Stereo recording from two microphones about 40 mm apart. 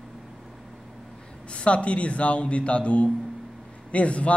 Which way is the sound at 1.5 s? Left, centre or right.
Left.